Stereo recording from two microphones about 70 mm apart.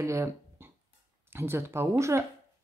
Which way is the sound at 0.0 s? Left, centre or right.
Right.